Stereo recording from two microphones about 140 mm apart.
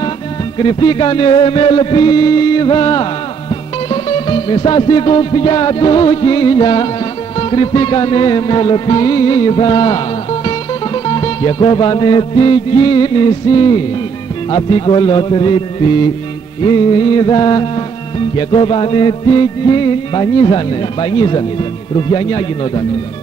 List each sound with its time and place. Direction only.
0.6 s music: 30° left (ahead or behind)